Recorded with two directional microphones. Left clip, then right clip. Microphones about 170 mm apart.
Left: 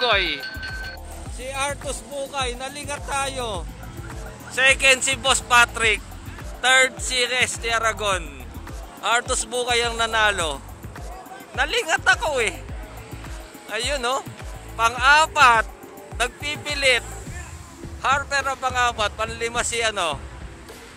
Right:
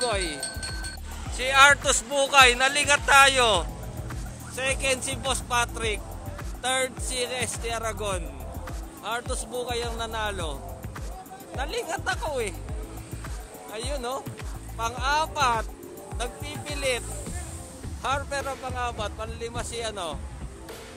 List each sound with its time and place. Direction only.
0.0 s speech: 10° right (ahead or behind)
1.4 s speech: 5° left (ahead or behind)
2.1 s speech: 10° right (ahead or behind)
9.0 s speech: 10° left (ahead or behind)
13.7 s speech: 5° left (ahead or behind)
18.0 s a man's voice: 20° right (ahead or behind)
18.5 s speech: 5° right (ahead or behind)